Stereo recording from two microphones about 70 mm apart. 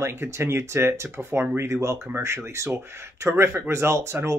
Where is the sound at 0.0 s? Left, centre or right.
Right.